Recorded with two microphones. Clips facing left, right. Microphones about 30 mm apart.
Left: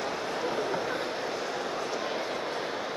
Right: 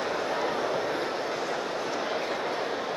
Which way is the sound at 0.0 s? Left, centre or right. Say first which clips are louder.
Right 3 dB; centre.